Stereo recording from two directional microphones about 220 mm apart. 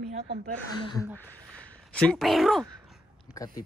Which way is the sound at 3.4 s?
15° left (ahead or behind).